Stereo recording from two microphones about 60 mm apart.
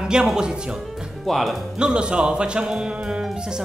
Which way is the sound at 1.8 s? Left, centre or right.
Centre.